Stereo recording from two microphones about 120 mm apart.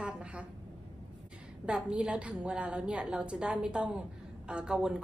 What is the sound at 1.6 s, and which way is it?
A woman's voice, 10° right (ahead or behind).